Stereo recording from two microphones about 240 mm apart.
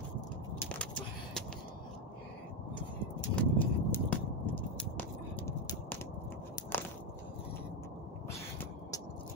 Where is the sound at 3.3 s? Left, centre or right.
Centre.